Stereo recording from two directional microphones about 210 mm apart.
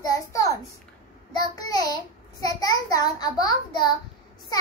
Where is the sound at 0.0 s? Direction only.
15° left (ahead or behind).